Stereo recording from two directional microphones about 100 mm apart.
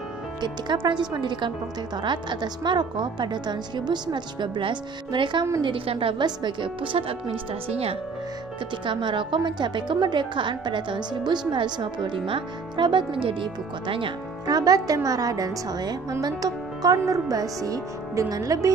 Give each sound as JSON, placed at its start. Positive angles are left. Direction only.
{"t": 0.8, "sound": "a woman's voice", "side_deg": -50}
{"t": 5.6, "sound": "speech", "side_deg": -60}
{"t": 6.2, "sound": "speech", "side_deg": -50}
{"t": 7.6, "sound": "speech", "side_deg": -75}
{"t": 8.8, "sound": "a woman's voice", "side_deg": -55}
{"t": 14.4, "sound": "a woman's voice", "side_deg": -40}